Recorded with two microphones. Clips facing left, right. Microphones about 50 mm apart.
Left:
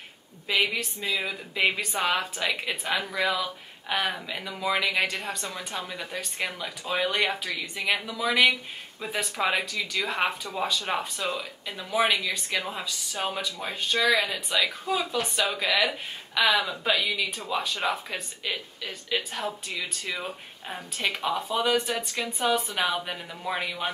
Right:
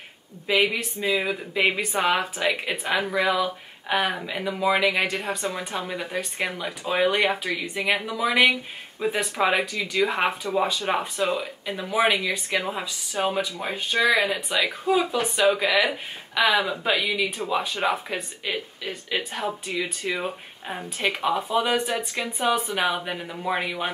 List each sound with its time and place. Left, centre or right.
0.5 s speech: centre